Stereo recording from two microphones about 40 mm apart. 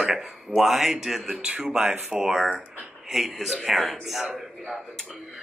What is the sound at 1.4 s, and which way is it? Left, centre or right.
A man's voice, right.